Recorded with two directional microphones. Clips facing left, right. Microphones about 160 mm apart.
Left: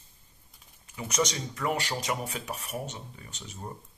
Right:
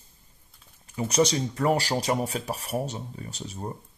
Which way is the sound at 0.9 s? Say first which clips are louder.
Right 7 dB; 35° right (ahead or behind).